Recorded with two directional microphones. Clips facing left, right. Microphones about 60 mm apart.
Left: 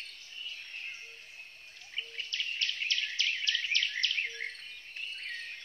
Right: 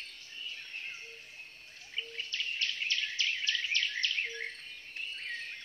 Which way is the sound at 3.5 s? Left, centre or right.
Right.